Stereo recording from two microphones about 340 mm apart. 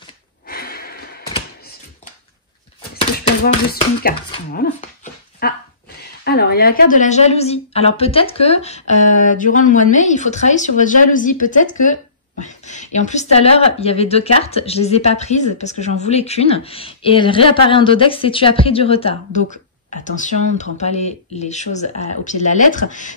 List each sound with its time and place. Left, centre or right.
0.5 s snort: left
3.0 s a sound: centre
5.4 s speech: left